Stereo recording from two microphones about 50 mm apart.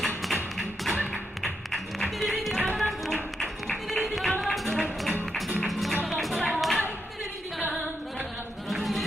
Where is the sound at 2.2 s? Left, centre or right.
Centre.